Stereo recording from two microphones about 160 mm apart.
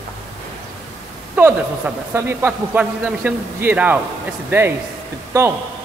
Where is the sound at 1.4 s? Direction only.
10° right (ahead or behind).